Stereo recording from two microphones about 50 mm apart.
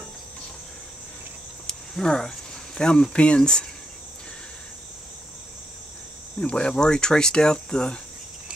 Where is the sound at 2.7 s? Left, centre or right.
Centre.